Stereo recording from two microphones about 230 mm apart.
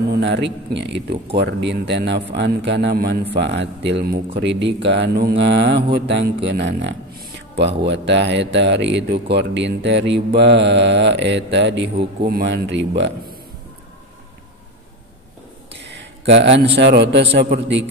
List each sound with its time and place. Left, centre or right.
0.1 s speech: right
15.7 s a sound: right
16.3 s speech: right